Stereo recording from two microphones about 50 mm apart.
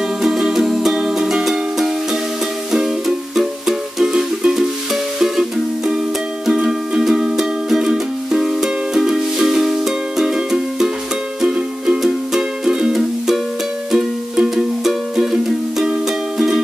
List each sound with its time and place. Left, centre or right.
0.2 s music: centre